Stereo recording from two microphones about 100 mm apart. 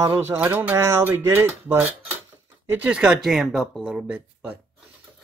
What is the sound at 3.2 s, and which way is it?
Speech, centre (ahead or behind).